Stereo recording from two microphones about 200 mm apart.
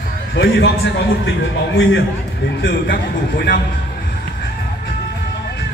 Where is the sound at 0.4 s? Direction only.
60° left (ahead or behind).